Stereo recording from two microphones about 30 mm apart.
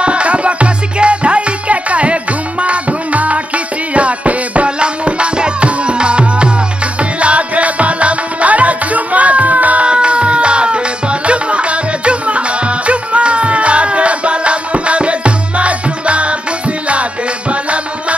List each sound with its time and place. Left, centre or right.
0.0 s music: right
4.6 s music: right
9.8 s music: right
17.5 s tabla: right